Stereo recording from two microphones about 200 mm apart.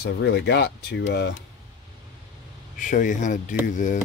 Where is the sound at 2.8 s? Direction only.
40° left (ahead or behind).